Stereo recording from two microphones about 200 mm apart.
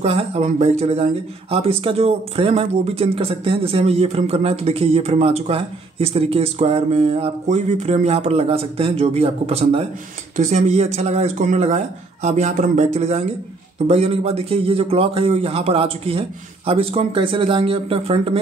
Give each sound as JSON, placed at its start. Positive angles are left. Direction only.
{"t": 0.0, "sound": "speech", "side_deg": -30}